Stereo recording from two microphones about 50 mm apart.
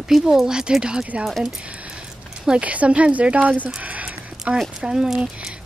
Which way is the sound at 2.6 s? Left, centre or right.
Right.